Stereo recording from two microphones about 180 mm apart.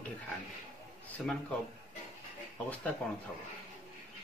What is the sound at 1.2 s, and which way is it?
Speech, centre (ahead or behind).